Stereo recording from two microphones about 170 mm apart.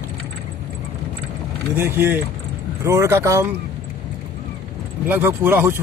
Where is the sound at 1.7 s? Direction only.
15° right (ahead or behind).